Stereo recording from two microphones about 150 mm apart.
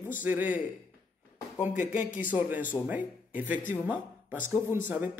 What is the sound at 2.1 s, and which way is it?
Music, 10° right (ahead or behind).